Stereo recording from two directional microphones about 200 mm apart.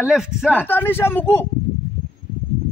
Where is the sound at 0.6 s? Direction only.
10° left (ahead or behind).